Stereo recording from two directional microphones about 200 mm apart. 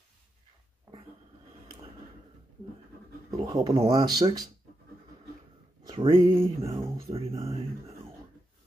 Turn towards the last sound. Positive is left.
turn(degrees=-25)  # may be behind; listen again after turning